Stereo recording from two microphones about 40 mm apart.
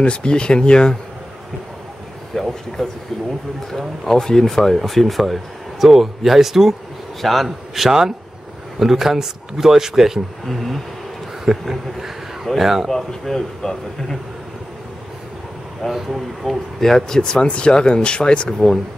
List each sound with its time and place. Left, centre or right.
0.0 s speech: left
2.3 s a man's voice: centre
10.4 s a man's voice: centre
12.9 s speech: centre
15.9 s speech: centre
16.8 s speech: centre